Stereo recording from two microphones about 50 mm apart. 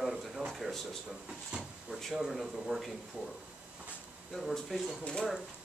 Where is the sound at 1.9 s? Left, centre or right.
Centre.